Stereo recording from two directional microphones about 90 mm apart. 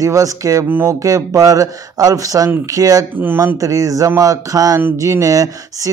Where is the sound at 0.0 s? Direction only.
40° right (ahead or behind).